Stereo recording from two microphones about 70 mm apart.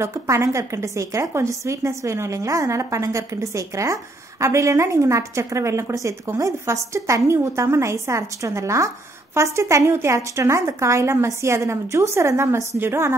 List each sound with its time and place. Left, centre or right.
0.0 s a woman's voice: right